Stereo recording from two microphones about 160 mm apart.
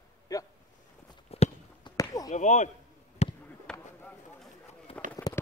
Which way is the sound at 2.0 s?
25° left (ahead or behind).